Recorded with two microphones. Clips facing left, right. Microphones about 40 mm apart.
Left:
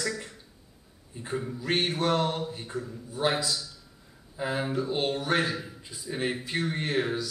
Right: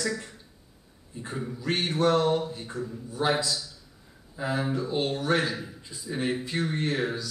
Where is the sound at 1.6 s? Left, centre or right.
Centre.